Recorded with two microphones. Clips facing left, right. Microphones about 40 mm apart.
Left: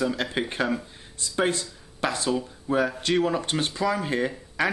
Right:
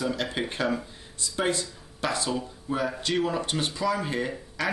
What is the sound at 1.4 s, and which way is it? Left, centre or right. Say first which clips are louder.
Speech: left 2 dB; left.